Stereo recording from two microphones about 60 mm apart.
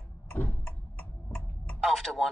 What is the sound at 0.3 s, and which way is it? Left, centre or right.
Tick-tock, left.